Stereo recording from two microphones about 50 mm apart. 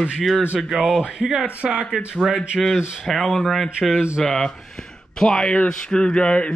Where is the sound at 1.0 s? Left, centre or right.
Centre.